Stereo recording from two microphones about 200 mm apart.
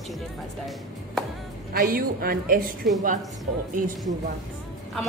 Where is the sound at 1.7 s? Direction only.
45° right (ahead or behind).